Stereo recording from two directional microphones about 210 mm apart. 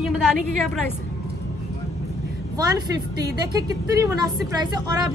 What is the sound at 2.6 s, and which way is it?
A woman's voice, 20° right (ahead or behind).